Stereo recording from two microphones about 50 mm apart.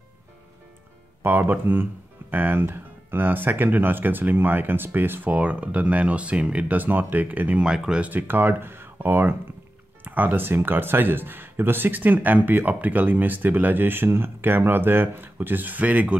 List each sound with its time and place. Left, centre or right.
1.2 s speech: right
5.3 s speech: right
6.7 s speech: right
7.6 s speech: centre
8.0 s speech: right